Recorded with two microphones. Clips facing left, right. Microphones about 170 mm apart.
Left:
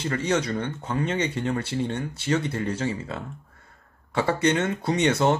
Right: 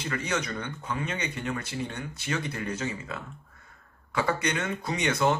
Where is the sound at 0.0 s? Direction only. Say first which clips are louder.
Left 6 dB; 30° left (ahead or behind).